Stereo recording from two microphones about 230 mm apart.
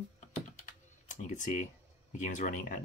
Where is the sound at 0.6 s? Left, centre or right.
Left.